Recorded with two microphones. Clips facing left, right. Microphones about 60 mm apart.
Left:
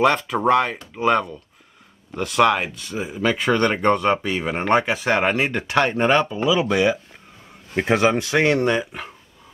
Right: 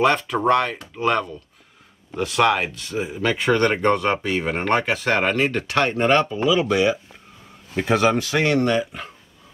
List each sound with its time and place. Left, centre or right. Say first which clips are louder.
0.0 s speech: left 1 dB; centre
6.1 s speech: even; centre
6.7 s speech: even; left